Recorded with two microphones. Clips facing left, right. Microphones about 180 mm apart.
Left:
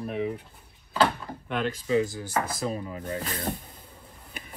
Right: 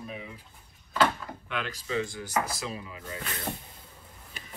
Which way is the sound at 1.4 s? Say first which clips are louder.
Left 7 dB; 50° left (ahead or behind).